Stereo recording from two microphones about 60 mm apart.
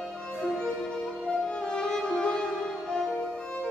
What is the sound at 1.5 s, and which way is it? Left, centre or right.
Music, centre.